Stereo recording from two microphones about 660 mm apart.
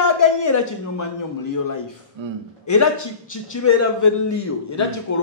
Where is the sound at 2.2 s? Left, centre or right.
Right.